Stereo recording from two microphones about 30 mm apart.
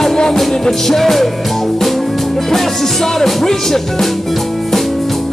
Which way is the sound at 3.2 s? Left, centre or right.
Centre.